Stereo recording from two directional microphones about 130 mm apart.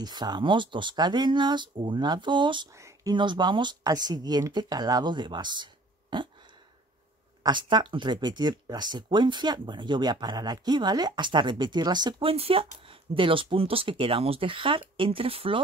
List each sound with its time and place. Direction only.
0.0 s speech: 30° right (ahead or behind)
2.7 s a sound: 25° right (ahead or behind)
3.2 s speech: 35° right (ahead or behind)
7.4 s speech: 35° right (ahead or behind)